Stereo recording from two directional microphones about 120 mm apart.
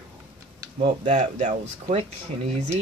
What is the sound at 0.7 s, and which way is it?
Speech, 65° right (ahead or behind).